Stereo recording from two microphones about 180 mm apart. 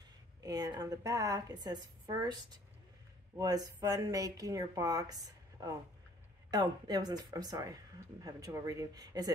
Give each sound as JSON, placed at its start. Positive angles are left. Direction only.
{"t": 0.4, "sound": "speech", "side_deg": -20}